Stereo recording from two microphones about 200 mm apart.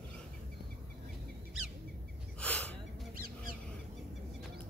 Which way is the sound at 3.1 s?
45° right (ahead or behind).